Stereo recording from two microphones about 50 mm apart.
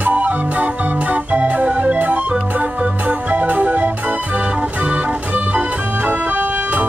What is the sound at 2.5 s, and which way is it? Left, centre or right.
Music, right.